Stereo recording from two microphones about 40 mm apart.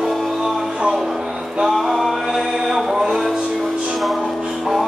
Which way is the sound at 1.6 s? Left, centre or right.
Centre.